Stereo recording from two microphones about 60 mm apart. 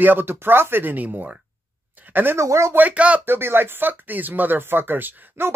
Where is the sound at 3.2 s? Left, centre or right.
Right.